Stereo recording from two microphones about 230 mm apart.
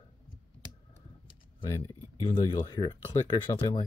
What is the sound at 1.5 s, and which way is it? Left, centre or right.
Speech, centre.